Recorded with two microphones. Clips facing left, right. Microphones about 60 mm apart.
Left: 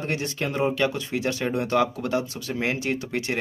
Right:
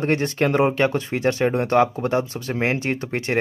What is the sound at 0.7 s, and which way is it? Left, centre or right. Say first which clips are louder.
A man's voice: right 4 dB; right.